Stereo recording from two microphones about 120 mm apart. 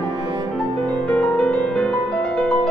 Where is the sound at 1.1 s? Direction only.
10° left (ahead or behind).